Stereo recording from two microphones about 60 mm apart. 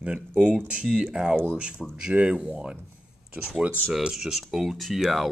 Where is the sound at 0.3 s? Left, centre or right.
Right.